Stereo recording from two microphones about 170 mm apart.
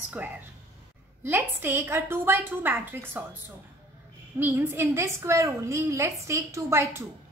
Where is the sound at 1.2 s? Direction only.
10° right (ahead or behind).